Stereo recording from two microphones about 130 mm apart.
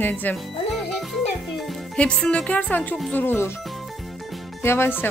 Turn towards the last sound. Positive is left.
turn(degrees=15)  # may be behind; listen again after turning